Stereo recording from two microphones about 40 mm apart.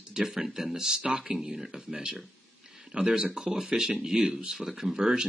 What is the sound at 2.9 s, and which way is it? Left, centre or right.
Speech, right.